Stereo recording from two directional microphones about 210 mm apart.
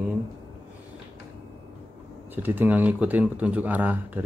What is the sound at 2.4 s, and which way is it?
Speech, 10° right (ahead or behind).